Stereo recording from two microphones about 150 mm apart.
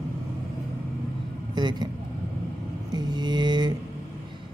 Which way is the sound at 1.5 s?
30° right (ahead or behind).